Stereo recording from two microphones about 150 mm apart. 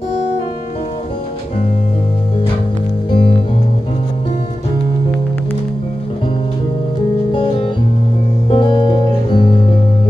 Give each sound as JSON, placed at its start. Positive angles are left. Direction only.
{"t": 3.1, "sound": "music", "side_deg": 30}
{"t": 7.3, "sound": "music", "side_deg": 30}